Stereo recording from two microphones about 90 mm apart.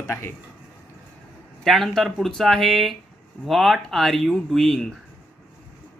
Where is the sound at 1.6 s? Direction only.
5° left (ahead or behind).